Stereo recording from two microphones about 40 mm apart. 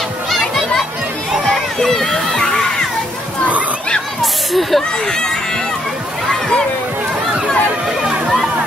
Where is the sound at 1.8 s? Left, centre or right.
Centre.